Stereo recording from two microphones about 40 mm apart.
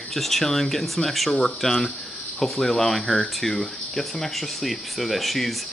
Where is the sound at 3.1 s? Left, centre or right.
Centre.